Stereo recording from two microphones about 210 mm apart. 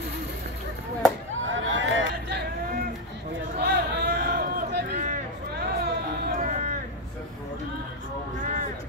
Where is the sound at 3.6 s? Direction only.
45° right (ahead or behind).